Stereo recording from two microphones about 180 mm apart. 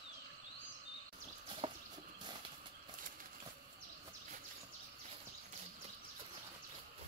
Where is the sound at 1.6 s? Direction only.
30° right (ahead or behind).